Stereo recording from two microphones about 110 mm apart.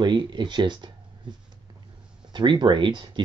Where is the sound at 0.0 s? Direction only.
45° right (ahead or behind).